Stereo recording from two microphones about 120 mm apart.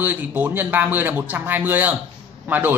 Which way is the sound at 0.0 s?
15° right (ahead or behind).